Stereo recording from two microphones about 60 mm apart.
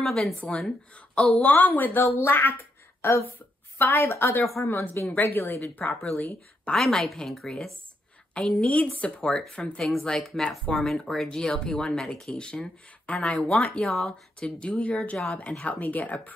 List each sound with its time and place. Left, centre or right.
0.4 s a woman's voice: left
5.1 s speech: left
6.8 s a woman's voice: centre; by 9.8 s left
9.8 s a woman's voice: centre
14.6 s speech: left